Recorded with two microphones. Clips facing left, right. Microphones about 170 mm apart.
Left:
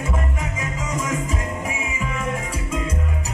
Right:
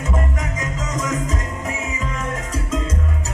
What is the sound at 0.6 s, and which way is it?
Music, 10° left (ahead or behind).